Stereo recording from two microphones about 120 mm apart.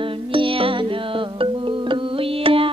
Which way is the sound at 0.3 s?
45° right (ahead or behind).